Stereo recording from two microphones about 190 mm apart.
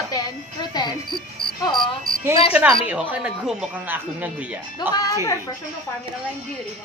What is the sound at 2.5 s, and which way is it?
Speech, 5° right (ahead or behind).